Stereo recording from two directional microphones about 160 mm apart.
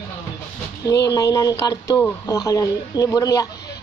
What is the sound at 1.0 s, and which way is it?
Speech, 20° left (ahead or behind).